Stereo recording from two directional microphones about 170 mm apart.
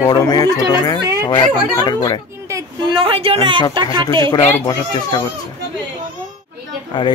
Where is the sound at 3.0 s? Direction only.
30° right (ahead or behind).